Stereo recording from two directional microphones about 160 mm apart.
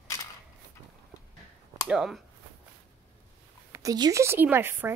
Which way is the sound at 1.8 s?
5° right (ahead or behind).